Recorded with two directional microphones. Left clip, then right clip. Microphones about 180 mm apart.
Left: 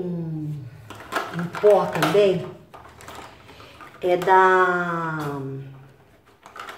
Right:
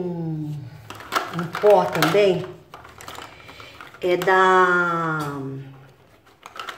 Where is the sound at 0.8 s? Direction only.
55° right (ahead or behind).